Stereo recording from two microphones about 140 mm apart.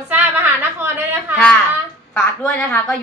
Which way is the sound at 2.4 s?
10° left (ahead or behind).